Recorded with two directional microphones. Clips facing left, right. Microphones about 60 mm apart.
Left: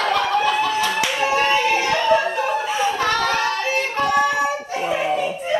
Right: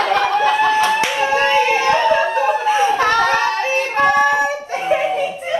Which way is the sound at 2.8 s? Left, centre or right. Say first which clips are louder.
Right 4 dB; right.